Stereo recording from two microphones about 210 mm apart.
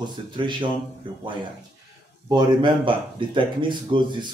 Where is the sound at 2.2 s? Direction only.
20° right (ahead or behind).